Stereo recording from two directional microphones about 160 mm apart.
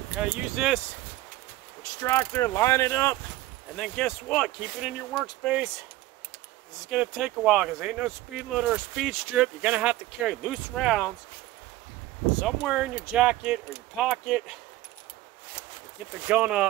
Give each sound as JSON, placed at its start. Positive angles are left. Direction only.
{"t": 0.2, "sound": "speech", "side_deg": -5}
{"t": 2.0, "sound": "speech", "side_deg": 15}
{"t": 6.9, "sound": "speech", "side_deg": 0}
{"t": 12.4, "sound": "speech", "side_deg": -5}
{"t": 16.3, "sound": "speech", "side_deg": -5}